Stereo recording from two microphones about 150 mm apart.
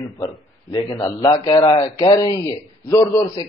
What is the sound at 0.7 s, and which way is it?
A man's voice, 30° left (ahead or behind).